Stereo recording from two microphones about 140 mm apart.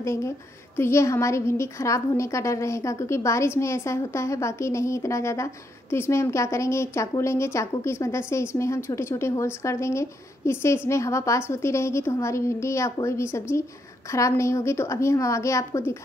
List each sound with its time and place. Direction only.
0.0 s a woman's voice: 20° left (ahead or behind)